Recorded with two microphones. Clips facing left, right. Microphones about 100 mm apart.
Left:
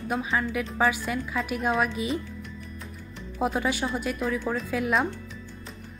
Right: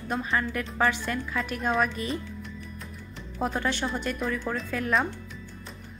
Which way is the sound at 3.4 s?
10° left (ahead or behind).